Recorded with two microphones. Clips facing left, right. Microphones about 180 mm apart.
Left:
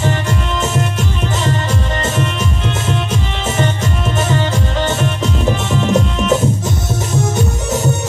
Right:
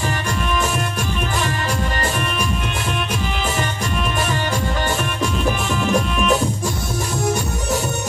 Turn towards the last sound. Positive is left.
turn(degrees=20)  # may be behind; listen again after turning